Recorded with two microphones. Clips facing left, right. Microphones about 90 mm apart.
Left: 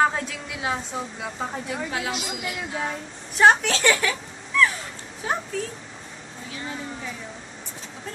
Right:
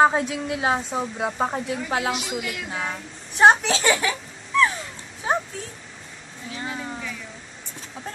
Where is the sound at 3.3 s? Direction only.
20° right (ahead or behind).